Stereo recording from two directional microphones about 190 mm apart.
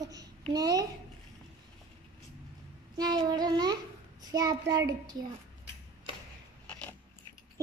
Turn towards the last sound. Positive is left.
turn(degrees=5)  # may be behind; listen again after turning